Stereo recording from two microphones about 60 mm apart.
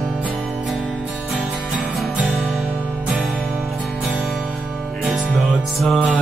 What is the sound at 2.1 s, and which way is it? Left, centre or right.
Music, right.